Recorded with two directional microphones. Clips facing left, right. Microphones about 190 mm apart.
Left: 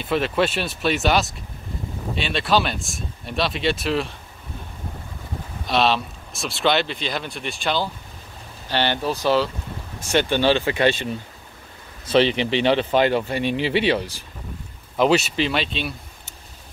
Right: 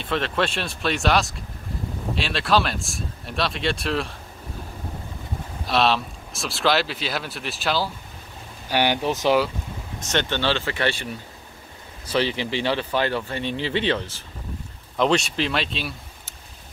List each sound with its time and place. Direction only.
0.0 s speech: 5° left (ahead or behind)
5.7 s speech: centre (ahead or behind); by 9.5 s 15° right (ahead or behind)
10.0 s speech: 10° left (ahead or behind)
12.1 s speech: 20° left (ahead or behind); by 16.3 s centre (ahead or behind)